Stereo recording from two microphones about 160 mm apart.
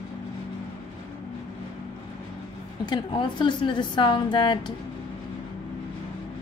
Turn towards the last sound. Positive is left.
turn(degrees=30)  # may be behind; listen again after turning